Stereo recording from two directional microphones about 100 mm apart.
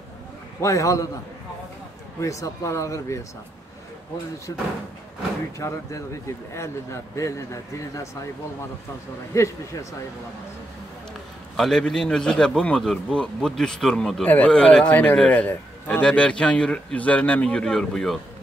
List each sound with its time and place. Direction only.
0.6 s speech: 30° left (ahead or behind)
2.1 s speech: 30° left (ahead or behind)
4.5 s speech: 40° left (ahead or behind)
9.3 s speech: 30° left (ahead or behind)
11.5 s a man's voice: 5° left (ahead or behind)
14.2 s a man's voice: 15° left (ahead or behind)